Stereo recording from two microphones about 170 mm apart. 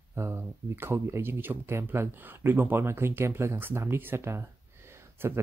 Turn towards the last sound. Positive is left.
turn(degrees=-15)  # may be behind; listen again after turning